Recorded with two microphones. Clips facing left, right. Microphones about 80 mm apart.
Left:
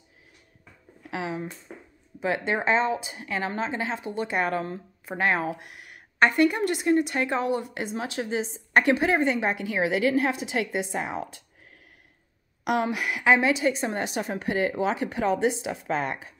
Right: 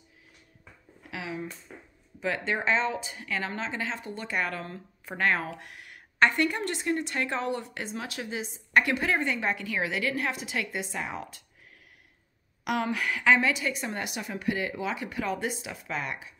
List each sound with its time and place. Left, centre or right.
1.1 s speech: left
2.1 s a woman's voice: left
12.6 s a woman's voice: left